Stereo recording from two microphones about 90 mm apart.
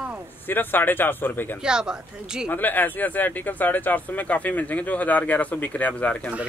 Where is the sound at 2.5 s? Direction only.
20° left (ahead or behind).